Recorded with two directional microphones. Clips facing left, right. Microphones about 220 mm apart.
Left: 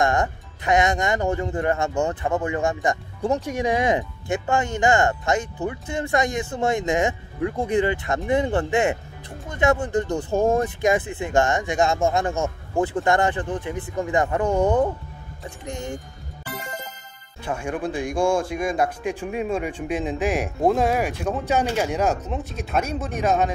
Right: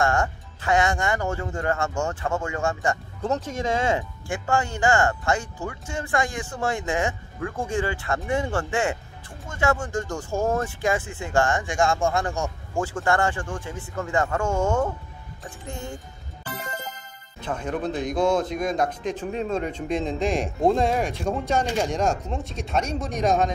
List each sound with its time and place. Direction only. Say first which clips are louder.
0.0 s speech: left 2 dB; 20° left (ahead or behind)
17.4 s speech: left 1 dB; 10° left (ahead or behind)